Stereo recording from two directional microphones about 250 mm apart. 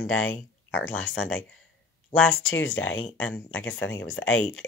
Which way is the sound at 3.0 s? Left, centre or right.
Centre.